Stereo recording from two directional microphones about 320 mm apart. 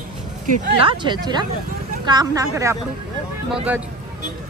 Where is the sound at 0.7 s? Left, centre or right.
Centre.